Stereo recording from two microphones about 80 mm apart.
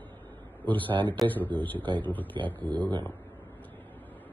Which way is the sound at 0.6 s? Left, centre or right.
Left.